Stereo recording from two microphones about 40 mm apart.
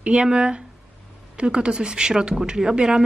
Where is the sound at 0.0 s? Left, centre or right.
Right.